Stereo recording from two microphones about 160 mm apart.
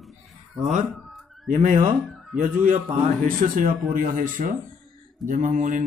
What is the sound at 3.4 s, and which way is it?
A man's voice, 60° right (ahead or behind).